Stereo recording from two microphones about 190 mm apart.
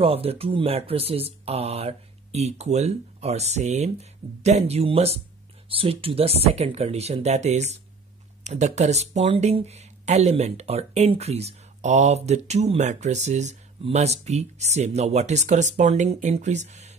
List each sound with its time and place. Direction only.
0.0 s speech: 30° right (ahead or behind)